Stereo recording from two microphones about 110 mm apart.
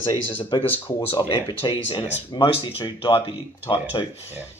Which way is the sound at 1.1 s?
55° left (ahead or behind).